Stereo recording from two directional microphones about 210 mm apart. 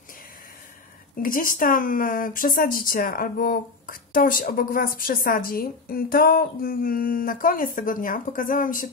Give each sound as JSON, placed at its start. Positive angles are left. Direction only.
{"t": 1.2, "sound": "speech", "side_deg": 40}